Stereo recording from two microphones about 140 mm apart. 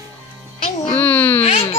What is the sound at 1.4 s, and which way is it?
Speech, 45° left (ahead or behind).